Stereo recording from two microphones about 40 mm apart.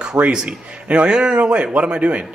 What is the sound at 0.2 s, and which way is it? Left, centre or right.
Speech, right.